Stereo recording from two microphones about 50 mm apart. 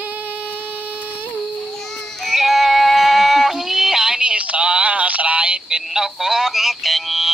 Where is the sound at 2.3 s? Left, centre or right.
Centre; by 5.8 s right.